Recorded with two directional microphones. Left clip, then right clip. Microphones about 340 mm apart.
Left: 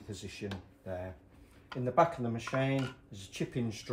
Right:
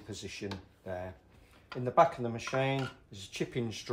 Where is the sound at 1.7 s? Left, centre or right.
Centre.